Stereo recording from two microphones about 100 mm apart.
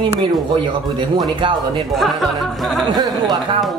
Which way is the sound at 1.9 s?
Centre (ahead or behind).